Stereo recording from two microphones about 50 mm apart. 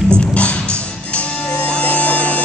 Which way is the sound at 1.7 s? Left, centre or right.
Left.